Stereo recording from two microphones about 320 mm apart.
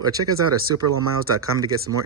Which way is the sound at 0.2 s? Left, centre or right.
Right.